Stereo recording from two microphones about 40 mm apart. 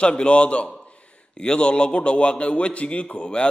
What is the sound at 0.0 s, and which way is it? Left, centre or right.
A man's voice, left.